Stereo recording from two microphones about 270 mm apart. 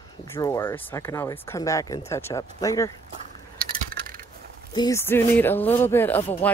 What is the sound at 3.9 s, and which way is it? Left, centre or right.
Crushing, right.